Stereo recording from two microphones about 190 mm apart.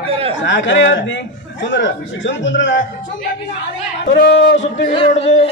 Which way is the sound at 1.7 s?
70° left (ahead or behind).